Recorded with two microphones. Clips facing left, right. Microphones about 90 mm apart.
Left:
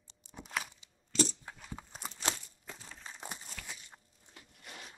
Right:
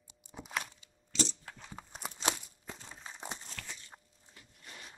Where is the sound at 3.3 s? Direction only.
5° left (ahead or behind).